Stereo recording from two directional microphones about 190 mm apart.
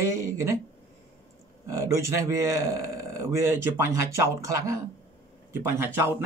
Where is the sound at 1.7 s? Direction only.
15° right (ahead or behind).